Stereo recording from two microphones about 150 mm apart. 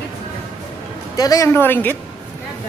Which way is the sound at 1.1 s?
25° left (ahead or behind).